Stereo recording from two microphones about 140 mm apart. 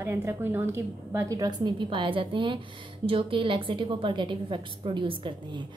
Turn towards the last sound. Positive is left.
turn(degrees=-35)  # may be behind; listen again after turning